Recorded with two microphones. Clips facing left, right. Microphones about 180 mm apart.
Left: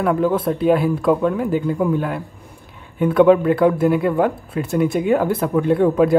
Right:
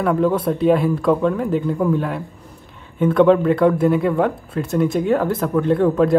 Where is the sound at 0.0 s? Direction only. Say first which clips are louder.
Even; centre (ahead or behind).